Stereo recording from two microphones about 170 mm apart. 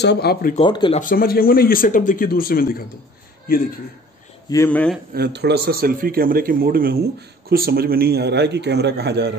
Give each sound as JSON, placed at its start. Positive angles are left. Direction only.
{"t": 0.0, "sound": "speech", "side_deg": 75}
{"t": 0.6, "sound": "speech", "side_deg": 30}
{"t": 0.9, "sound": "speech", "side_deg": 55}
{"t": 4.6, "sound": "a man's voice", "side_deg": 10}
{"t": 5.1, "sound": "a man's voice", "side_deg": -70}